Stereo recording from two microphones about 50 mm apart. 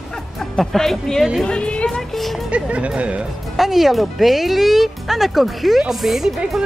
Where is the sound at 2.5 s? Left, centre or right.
Right.